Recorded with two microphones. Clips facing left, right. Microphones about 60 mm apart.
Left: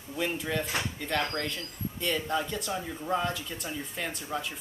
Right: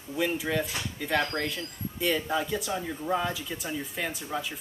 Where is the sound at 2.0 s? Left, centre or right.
Centre.